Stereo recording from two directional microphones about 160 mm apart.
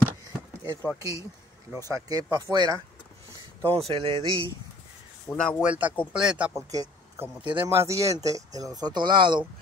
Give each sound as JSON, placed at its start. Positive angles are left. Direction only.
{"t": 0.9, "sound": "speech", "side_deg": -20}
{"t": 3.6, "sound": "speech", "side_deg": -35}
{"t": 5.3, "sound": "speech", "side_deg": 10}
{"t": 5.6, "sound": "speech", "side_deg": -10}
{"t": 6.5, "sound": "speech", "side_deg": -20}